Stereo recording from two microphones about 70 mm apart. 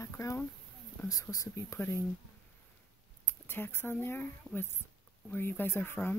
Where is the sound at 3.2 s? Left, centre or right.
Left.